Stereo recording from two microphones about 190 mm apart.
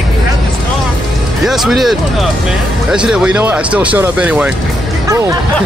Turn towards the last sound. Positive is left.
turn(degrees=-15)  # may be behind; listen again after turning